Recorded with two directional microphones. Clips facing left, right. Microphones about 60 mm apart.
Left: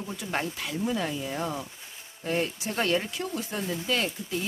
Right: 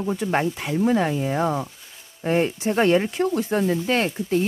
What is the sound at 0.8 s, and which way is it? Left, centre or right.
Speech, right.